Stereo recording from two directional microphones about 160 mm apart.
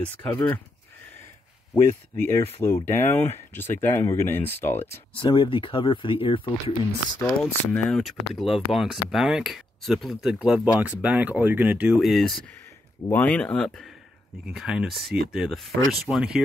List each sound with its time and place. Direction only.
0.0 s speech: 10° left (ahead or behind)
1.9 s speech: 15° left (ahead or behind)
5.1 s speech: 30° left (ahead or behind)
7.2 s speech: 10° left (ahead or behind)